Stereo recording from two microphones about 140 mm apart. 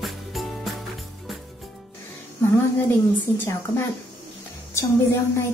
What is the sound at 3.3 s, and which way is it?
Speech, 15° left (ahead or behind).